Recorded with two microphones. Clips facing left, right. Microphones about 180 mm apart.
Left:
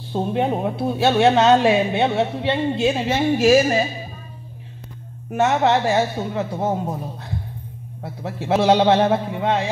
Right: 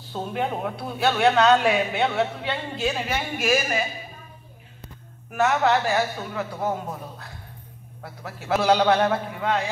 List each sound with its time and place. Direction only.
0.1 s speech: 25° left (ahead or behind)
5.3 s speech: 20° left (ahead or behind)
8.0 s speech: 20° left (ahead or behind)